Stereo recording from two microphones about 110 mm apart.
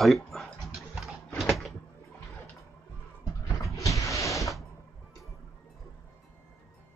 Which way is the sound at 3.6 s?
30° left (ahead or behind).